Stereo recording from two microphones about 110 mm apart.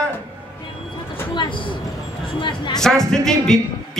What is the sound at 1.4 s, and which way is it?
Speech, 50° left (ahead or behind).